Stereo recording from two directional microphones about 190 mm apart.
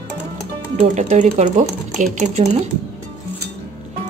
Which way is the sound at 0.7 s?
40° right (ahead or behind).